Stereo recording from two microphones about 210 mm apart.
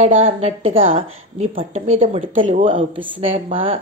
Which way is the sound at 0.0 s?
30° right (ahead or behind).